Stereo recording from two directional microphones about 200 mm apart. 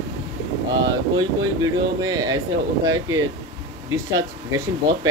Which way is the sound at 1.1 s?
20° right (ahead or behind).